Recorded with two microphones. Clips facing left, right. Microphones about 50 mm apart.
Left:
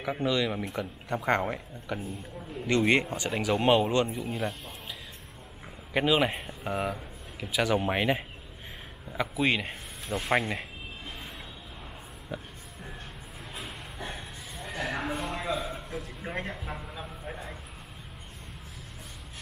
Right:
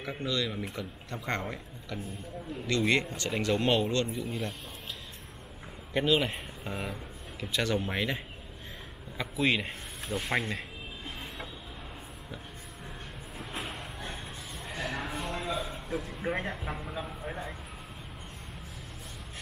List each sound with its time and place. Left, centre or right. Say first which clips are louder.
0.0 s speech: left 5 dB; centre
4.2 s speech: left 3 dB; centre
5.9 s speech: left 2 dB; centre
9.1 s speech: left 2 dB; centre
13.4 s a sound: right 3 dB; centre